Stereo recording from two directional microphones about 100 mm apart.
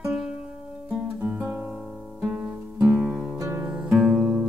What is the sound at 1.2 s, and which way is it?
Guitar, 20° right (ahead or behind).